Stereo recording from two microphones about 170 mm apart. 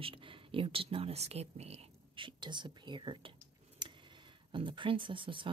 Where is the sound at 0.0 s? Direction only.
30° right (ahead or behind).